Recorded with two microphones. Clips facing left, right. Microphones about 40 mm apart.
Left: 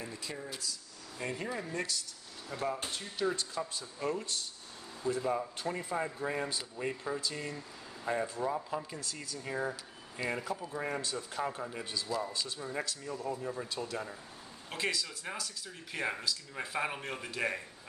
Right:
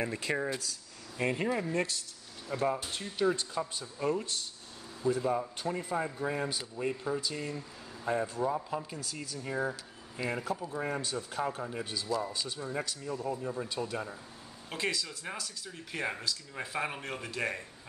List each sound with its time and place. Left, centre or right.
0.0 s speech: right
1.1 s speech: right
2.5 s speech: right
5.0 s speech: centre